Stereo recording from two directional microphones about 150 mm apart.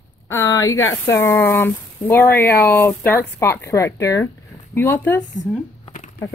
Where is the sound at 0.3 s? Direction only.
20° left (ahead or behind).